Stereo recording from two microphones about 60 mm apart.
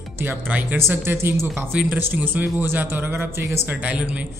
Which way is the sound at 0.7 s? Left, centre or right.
Right.